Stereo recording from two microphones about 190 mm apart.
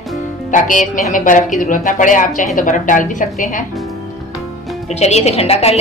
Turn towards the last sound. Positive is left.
turn(degrees=30)  # may be behind; listen again after turning